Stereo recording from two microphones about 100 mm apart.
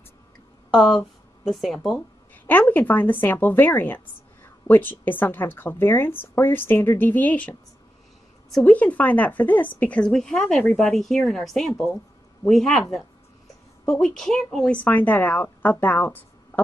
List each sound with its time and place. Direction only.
0.7 s speech: centre (ahead or behind)
2.3 s a woman's voice: 20° left (ahead or behind)
8.6 s speech: 15° left (ahead or behind)
13.8 s speech: 5° left (ahead or behind)